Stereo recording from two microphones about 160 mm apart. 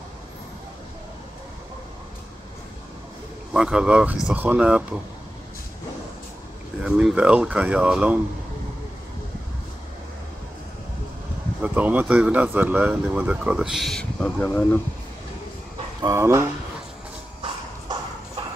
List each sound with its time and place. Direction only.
3.5 s speech: 5° right (ahead or behind)
6.8 s speech: 5° right (ahead or behind)
11.6 s speech: 10° right (ahead or behind); by 14.8 s 10° left (ahead or behind)
16.0 s speech: 20° right (ahead or behind)